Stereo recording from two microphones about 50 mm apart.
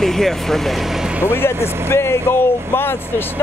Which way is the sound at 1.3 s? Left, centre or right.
Left.